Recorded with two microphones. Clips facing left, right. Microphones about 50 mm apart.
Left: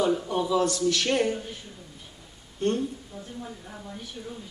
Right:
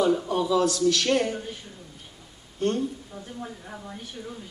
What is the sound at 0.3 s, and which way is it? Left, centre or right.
Speech, centre.